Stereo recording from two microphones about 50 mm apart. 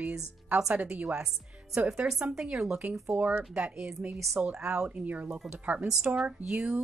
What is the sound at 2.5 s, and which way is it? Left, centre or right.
Speech, centre.